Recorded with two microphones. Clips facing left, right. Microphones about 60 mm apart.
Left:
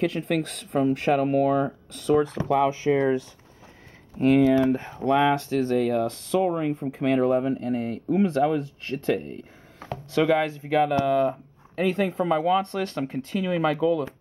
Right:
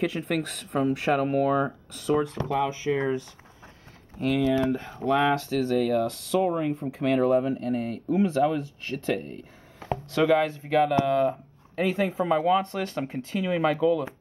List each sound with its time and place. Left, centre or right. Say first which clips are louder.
0.0 s speech: left 2 dB; centre
2.5 s speech: left 5 dB; left
4.2 s speech: left 6 dB; left
4.8 s speech: left 2 dB; centre